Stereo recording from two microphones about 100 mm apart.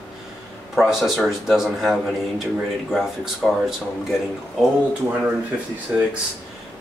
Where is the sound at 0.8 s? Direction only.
5° right (ahead or behind).